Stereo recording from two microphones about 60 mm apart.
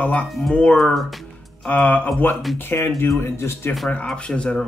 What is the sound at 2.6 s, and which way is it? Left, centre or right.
Speech, left.